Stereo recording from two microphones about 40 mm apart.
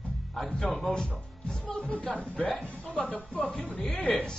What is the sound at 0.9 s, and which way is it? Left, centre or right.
Music, centre.